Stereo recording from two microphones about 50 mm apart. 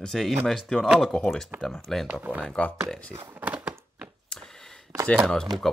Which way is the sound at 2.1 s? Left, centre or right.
Right.